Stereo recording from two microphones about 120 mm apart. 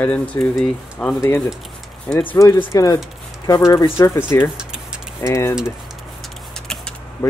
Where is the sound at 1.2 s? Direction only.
20° left (ahead or behind).